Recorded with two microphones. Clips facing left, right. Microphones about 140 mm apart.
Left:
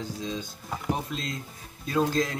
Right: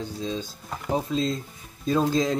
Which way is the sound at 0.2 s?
30° right (ahead or behind).